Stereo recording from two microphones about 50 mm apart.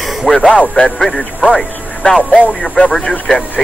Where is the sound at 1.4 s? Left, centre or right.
Centre.